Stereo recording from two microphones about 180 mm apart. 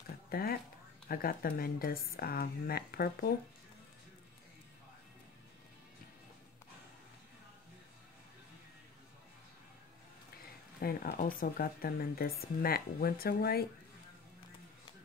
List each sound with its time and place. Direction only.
0.3 s speech: 55° left (ahead or behind)
10.8 s speech: 55° left (ahead or behind)